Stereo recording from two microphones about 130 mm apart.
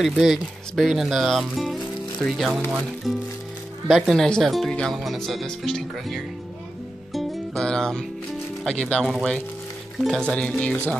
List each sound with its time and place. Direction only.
0.0 s speech: centre (ahead or behind)
7.1 s music: centre (ahead or behind)
8.6 s speech: 10° left (ahead or behind)